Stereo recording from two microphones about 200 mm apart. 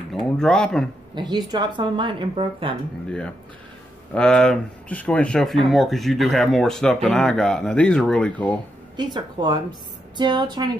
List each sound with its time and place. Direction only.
0.1 s speech: 5° left (ahead or behind)
1.1 s a woman's voice: 20° right (ahead or behind)
4.1 s speech: 5° left (ahead or behind)
8.9 s a woman's voice: 20° right (ahead or behind)